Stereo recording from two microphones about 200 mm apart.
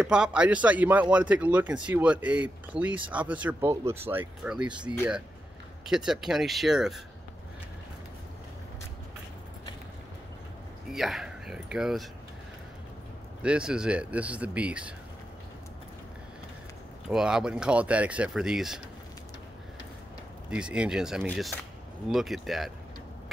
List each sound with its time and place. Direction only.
0.0 s speech: 5° right (ahead or behind)
10.9 s speech: centre (ahead or behind)
13.4 s speech: 5° right (ahead or behind)
17.1 s speech: 5° right (ahead or behind)
20.4 s speech: 5° right (ahead or behind)